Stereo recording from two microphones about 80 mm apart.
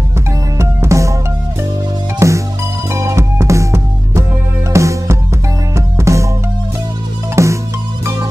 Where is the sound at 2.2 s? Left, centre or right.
Right.